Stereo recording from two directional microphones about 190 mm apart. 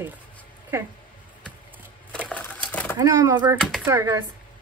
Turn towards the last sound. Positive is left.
turn(degrees=-15)  # may be behind; listen again after turning